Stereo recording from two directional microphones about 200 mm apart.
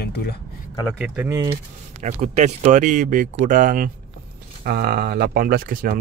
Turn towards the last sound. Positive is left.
turn(degrees=-45)  # may be behind; listen again after turning